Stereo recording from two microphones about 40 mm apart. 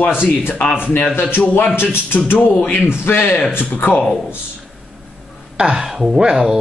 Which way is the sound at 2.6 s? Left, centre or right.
Left.